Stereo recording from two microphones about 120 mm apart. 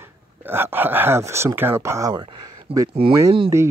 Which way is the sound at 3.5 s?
25° right (ahead or behind).